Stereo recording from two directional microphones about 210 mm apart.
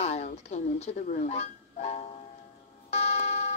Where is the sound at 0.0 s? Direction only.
30° left (ahead or behind).